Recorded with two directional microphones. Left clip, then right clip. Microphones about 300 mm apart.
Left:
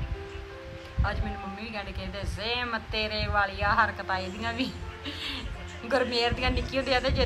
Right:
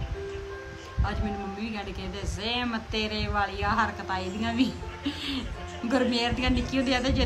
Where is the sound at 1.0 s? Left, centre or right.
Centre.